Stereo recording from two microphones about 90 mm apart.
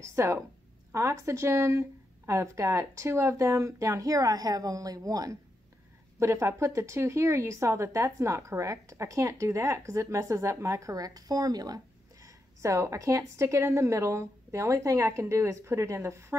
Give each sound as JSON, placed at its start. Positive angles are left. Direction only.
{"t": 0.0, "sound": "speech", "side_deg": -30}